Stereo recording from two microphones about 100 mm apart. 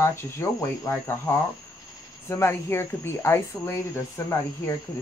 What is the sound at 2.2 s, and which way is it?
Speech, 25° left (ahead or behind).